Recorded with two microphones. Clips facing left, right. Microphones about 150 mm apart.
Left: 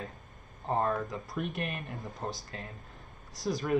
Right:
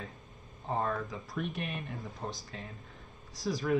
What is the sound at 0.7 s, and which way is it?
Speech, 35° left (ahead or behind).